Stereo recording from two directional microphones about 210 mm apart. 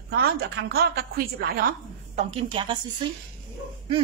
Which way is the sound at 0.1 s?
50° right (ahead or behind).